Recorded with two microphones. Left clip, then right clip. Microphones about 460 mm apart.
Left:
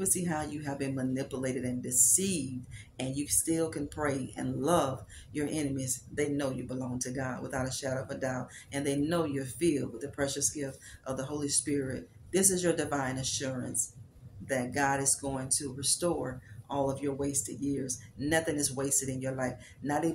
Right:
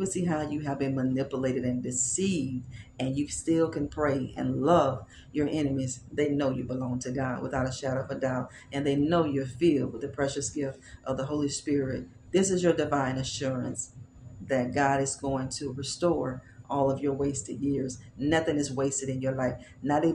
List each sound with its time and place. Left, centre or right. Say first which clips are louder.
0.0 s speech: right 3 dB; left